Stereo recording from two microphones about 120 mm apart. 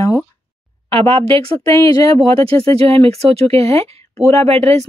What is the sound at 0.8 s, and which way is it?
Speech, 50° right (ahead or behind).